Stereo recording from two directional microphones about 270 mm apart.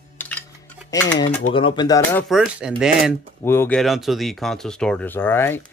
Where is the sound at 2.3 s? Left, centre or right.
Centre.